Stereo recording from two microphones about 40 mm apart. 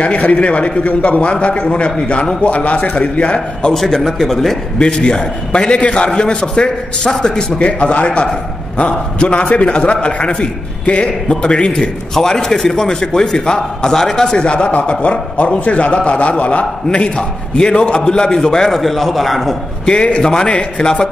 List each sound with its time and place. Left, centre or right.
0.0 s a man's voice: left
3.7 s a man's voice: centre
4.7 s a man's voice: left
7.5 s a man's voice: left
12.2 s a man's voice: centre
14.3 s a man's voice: left; by 19.5 s centre
19.9 s a man's voice: left